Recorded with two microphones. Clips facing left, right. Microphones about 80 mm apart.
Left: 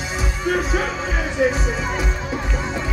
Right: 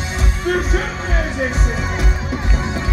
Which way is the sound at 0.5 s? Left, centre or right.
Centre.